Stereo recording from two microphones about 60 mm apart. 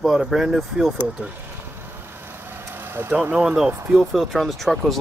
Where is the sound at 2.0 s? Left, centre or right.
Right.